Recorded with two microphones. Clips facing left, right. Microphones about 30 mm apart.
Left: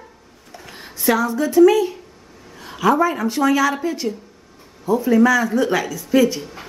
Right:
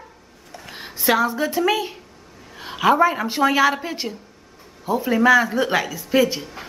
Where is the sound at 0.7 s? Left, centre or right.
Centre.